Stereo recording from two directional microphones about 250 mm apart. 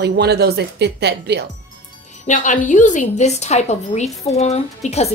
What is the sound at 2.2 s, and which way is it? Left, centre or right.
A woman's voice, left.